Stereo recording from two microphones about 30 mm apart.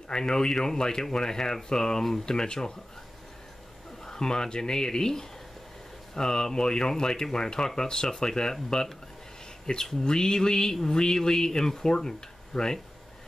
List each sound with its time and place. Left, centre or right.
0.1 s speech: left
2.3 s speech: left
4.0 s speech: left
12.5 s speech: centre